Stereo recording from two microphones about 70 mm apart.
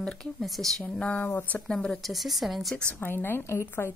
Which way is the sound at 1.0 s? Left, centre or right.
Left.